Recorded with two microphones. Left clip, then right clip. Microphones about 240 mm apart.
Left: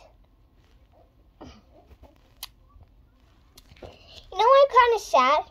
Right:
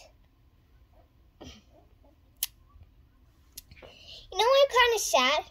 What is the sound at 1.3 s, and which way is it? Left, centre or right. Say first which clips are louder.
Cough: left 2 dB; right.